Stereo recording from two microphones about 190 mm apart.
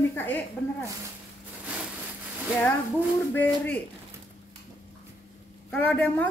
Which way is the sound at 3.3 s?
10° left (ahead or behind).